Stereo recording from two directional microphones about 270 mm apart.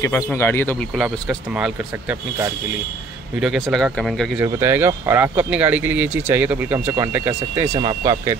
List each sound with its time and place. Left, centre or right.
0.0 s speech: centre
1.3 s speech: centre